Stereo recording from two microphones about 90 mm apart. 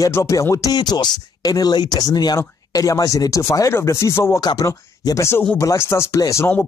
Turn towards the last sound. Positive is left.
turn(degrees=35)  # may be behind; listen again after turning